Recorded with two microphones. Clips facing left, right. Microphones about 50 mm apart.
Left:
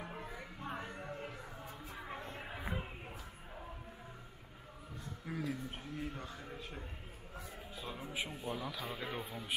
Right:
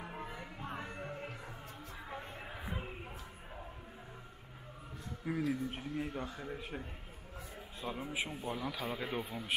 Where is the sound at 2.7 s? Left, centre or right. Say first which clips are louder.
Even; centre.